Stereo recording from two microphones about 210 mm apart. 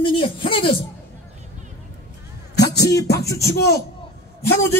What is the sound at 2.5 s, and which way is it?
Music, 15° left (ahead or behind).